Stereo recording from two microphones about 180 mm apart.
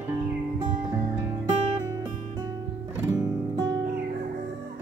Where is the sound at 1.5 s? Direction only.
40° right (ahead or behind).